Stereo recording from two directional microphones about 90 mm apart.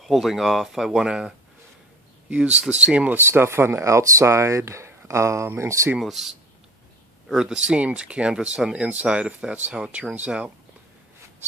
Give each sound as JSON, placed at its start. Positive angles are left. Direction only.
{"t": 0.0, "sound": "speech", "side_deg": 0}
{"t": 3.2, "sound": "speech", "side_deg": -25}
{"t": 5.9, "sound": "speech", "side_deg": -5}